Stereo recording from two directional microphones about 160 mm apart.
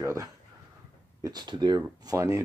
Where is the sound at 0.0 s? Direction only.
15° right (ahead or behind).